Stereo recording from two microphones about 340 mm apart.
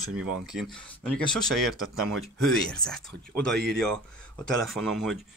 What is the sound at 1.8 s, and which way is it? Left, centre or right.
Speech, right.